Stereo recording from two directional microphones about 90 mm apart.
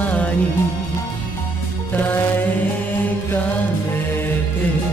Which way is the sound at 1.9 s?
20° left (ahead or behind).